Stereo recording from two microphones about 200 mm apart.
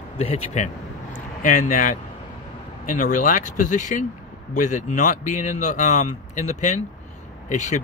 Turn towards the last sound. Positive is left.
turn(degrees=35)  # may be behind; listen again after turning